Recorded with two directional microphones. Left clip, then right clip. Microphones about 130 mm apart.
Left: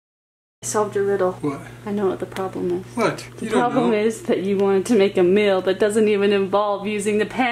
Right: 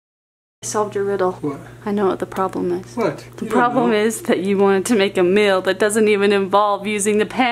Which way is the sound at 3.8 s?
50° right (ahead or behind).